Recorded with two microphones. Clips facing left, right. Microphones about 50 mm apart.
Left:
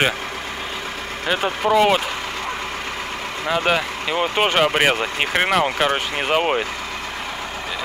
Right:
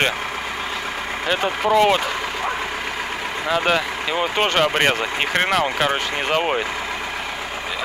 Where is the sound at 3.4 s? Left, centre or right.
Centre.